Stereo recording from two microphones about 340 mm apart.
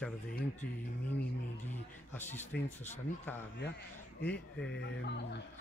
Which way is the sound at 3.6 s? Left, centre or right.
Left.